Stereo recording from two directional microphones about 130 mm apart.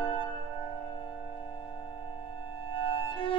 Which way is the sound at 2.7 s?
40° left (ahead or behind).